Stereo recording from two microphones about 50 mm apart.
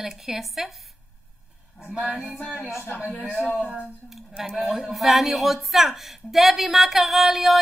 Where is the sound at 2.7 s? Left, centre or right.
Left.